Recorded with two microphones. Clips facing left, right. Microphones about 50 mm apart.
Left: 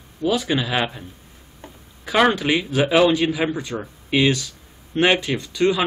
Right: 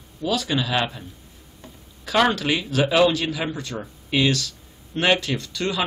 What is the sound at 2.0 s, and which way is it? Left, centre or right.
A man's voice, centre.